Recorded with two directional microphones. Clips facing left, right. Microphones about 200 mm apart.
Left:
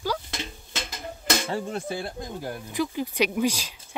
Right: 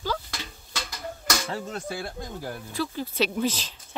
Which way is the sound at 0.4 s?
25° left (ahead or behind).